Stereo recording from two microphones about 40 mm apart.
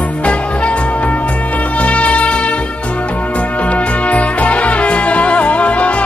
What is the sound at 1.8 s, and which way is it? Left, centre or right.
Shofar, left.